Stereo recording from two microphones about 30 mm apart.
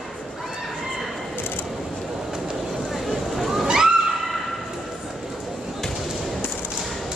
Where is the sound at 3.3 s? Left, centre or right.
Centre.